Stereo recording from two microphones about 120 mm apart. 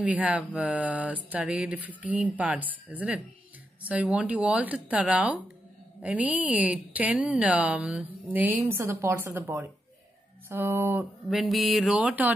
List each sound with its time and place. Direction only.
0.0 s a woman's voice: 10° right (ahead or behind)
11.2 s mantra: centre (ahead or behind)
12.0 s a woman's voice: 10° right (ahead or behind)